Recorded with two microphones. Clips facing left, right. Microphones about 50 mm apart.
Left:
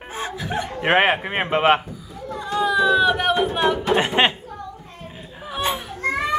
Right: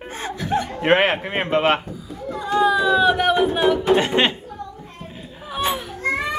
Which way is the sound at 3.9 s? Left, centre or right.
Centre.